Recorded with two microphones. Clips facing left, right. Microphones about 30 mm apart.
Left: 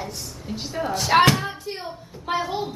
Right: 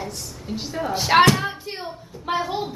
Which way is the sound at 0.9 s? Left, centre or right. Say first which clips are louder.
Right 1 dB; centre.